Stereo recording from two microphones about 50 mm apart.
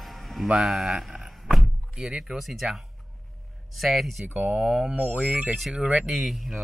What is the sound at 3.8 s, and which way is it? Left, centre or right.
Speech, centre.